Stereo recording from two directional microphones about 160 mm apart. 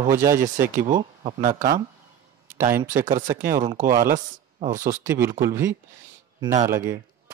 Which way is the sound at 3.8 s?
55° right (ahead or behind).